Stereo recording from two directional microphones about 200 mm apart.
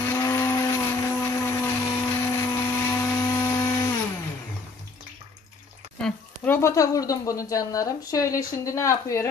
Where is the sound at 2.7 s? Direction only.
10° left (ahead or behind).